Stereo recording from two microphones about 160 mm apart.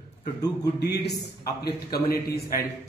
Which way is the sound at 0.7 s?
90° left.